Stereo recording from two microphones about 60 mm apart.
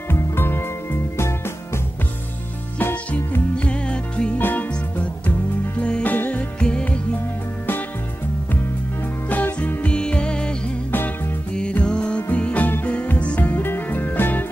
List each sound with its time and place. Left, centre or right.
0.1 s music: left
3.5 s music: centre
4.4 s music: left
5.8 s music: centre
6.0 s music: left
9.3 s music: left
11.5 s music: centre; by 14.4 s left